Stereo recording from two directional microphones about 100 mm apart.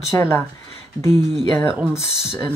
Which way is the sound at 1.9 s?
25° left (ahead or behind).